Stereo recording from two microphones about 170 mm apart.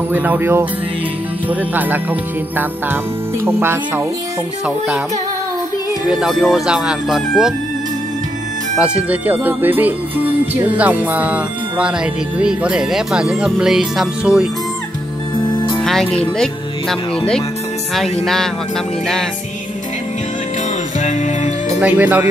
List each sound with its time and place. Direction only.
0.1 s speech: 10° right (ahead or behind)
6.0 s speech: centre (ahead or behind)
8.7 s speech: 5° right (ahead or behind)
15.8 s speech: 5° left (ahead or behind)
18.2 s speech: centre (ahead or behind)
21.0 s music: 45° left (ahead or behind)
21.7 s speech: 10° right (ahead or behind)